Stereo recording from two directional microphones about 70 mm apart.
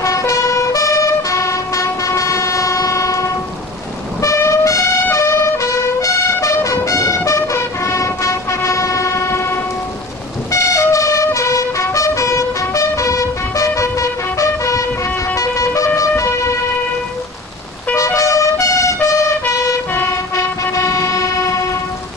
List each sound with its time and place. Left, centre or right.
0.0 s vehicle: left
4.2 s music: left
7.8 s train: left
10.5 s vehicle: left
10.9 s music: left
15.3 s vehicle: left
17.9 s music: left
19.4 s emergency vehicle: left
20.3 s vehicle: left